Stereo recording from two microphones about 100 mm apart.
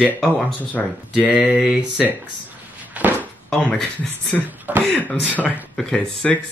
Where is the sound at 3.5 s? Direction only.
10° left (ahead or behind).